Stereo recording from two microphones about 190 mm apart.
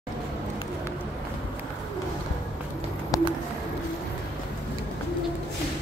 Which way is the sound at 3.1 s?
20° left (ahead or behind).